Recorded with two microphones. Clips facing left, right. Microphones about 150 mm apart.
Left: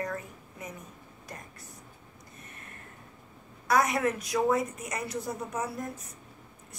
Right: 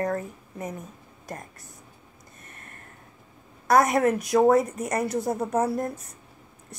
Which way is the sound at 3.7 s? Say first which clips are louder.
Right 6 dB; 45° right (ahead or behind).